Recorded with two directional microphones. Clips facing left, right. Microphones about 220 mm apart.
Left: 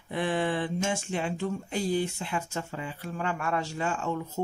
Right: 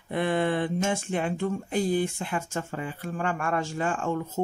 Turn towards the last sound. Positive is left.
turn(degrees=-50)  # may be behind; listen again after turning